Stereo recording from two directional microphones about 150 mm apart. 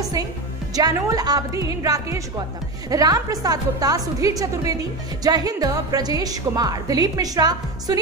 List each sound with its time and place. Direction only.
0.0 s a woman's voice: 25° right (ahead or behind)